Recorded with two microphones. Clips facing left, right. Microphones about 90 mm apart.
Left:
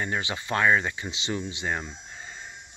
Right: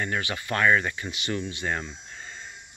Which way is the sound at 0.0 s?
20° left (ahead or behind).